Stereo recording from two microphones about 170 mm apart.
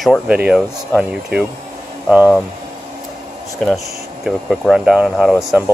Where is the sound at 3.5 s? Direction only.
Centre (ahead or behind).